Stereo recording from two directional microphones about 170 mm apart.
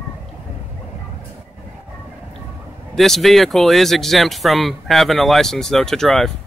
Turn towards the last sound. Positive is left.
turn(degrees=0)  # may be behind; listen again after turning